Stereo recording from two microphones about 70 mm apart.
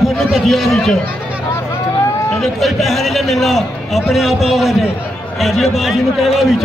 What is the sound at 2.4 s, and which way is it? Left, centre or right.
A man's voice, centre.